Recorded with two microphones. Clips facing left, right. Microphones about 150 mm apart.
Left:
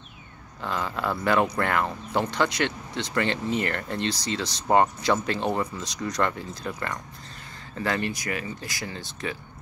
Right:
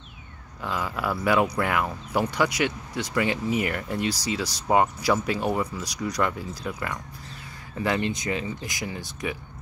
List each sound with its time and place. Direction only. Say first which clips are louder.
0.6 s speech: even; 5° right (ahead or behind)